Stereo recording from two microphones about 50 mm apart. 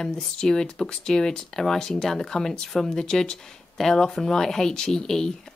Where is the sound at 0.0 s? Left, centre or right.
Centre.